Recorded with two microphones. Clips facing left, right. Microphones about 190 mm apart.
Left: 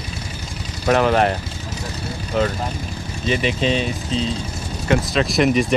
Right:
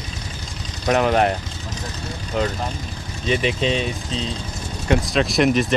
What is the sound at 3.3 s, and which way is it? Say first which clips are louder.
Speech: left 1 dB; centre (ahead or behind).